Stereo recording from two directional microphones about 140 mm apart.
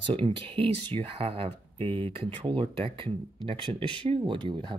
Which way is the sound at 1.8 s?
15° left (ahead or behind).